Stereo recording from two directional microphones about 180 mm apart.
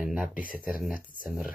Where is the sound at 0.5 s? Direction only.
50° left (ahead or behind).